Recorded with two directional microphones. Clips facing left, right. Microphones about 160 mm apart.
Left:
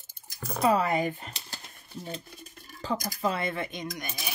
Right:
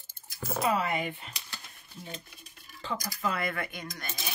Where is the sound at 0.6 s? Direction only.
40° left (ahead or behind).